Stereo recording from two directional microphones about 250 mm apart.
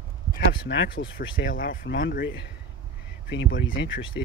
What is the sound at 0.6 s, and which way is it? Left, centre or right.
Speech, left.